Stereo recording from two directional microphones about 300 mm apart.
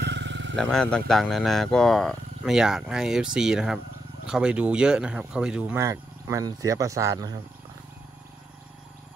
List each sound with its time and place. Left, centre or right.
0.0 s vehicle: right
0.6 s speech: centre